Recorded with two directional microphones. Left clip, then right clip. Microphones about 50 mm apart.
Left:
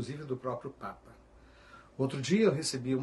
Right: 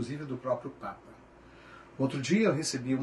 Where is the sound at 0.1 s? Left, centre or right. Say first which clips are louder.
Right 4 dB; right.